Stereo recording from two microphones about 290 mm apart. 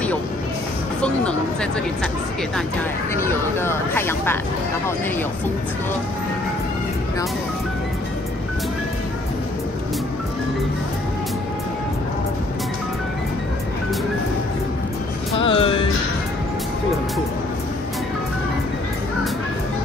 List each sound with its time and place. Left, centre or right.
1.0 s speech: centre
3.2 s speech: centre
15.3 s music: centre